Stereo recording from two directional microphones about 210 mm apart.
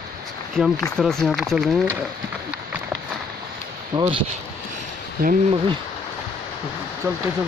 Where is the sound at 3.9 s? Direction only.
20° right (ahead or behind).